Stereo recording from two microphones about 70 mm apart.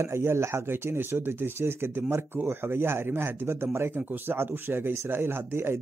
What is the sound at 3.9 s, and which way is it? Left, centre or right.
Speech, right.